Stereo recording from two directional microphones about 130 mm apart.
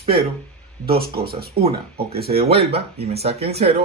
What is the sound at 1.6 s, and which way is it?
Speech, 50° right (ahead or behind).